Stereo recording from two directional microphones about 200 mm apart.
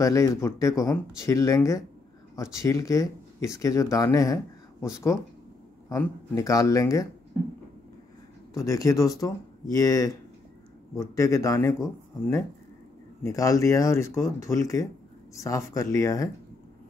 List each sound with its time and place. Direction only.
0.0 s speech: 15° left (ahead or behind)
8.5 s speech: 15° left (ahead or behind)